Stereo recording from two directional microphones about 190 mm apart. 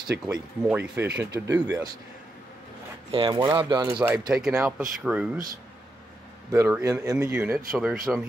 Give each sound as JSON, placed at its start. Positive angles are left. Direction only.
{"t": 0.1, "sound": "speech", "side_deg": -65}
{"t": 0.7, "sound": "speech", "side_deg": -5}
{"t": 3.1, "sound": "speech", "side_deg": -25}
{"t": 4.3, "sound": "speech", "side_deg": -5}
{"t": 6.5, "sound": "speech", "side_deg": -15}